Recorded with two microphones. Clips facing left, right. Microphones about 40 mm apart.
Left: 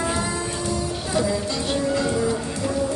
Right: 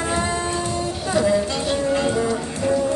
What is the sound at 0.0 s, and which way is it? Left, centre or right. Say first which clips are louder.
Music: right 2 dB; right.